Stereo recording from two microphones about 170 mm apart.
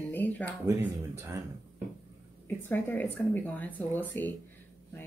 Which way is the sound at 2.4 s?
10° left (ahead or behind).